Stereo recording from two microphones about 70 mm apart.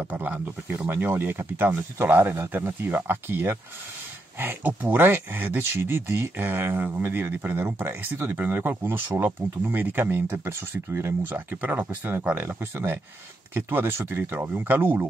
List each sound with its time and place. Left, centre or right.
0.0 s speech: right